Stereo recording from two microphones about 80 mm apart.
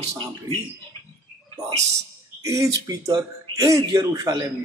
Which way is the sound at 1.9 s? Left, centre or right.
Right.